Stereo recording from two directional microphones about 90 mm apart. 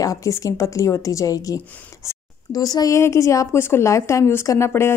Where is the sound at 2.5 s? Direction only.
45° left (ahead or behind).